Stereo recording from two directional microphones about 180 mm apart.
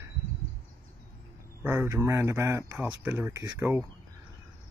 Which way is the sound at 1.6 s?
15° right (ahead or behind).